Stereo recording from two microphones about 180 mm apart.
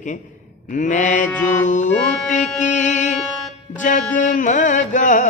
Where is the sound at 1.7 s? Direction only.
45° left (ahead or behind).